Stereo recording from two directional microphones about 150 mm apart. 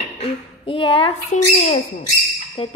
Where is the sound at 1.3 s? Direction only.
50° left (ahead or behind).